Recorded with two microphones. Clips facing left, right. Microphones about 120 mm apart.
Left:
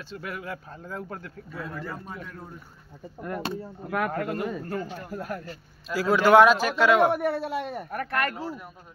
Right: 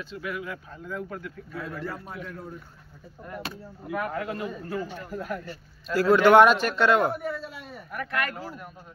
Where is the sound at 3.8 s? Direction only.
70° left (ahead or behind).